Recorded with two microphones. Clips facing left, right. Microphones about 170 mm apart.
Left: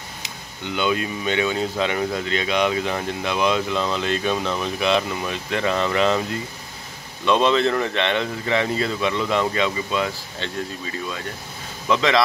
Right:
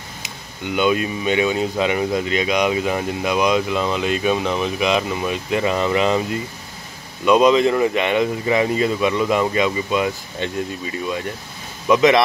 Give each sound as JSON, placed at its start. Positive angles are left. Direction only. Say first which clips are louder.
{"t": 0.2, "sound": "speech", "louder": "right 4 dB", "side_deg": -15}
{"t": 7.2, "sound": "speech", "louder": "right 4 dB", "side_deg": -10}
{"t": 11.9, "sound": "speech", "louder": "right 6 dB", "side_deg": -15}